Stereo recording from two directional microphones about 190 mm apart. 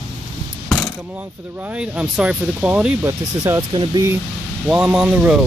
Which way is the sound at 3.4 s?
20° right (ahead or behind).